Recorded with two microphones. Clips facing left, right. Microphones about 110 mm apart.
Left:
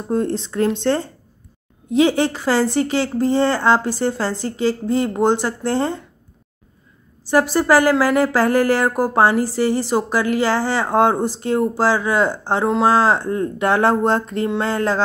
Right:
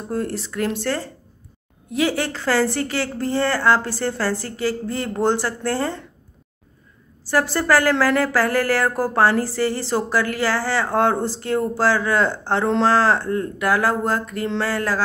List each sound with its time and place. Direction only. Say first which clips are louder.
0.1 s speech: left 5 dB; 25° left (ahead or behind)
7.2 s speech: left 4 dB; 15° left (ahead or behind)